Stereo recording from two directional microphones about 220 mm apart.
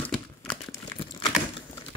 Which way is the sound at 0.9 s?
20° left (ahead or behind).